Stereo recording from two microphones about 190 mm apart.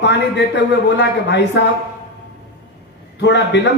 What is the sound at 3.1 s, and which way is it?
Speech, 65° left (ahead or behind).